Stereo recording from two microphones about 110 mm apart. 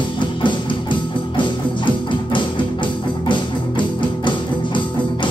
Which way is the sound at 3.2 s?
45° left (ahead or behind).